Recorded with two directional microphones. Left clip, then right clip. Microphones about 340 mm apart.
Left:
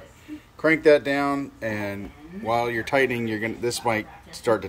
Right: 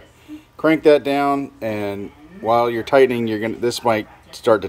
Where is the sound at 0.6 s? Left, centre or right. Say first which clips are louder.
Right 4 dB; right.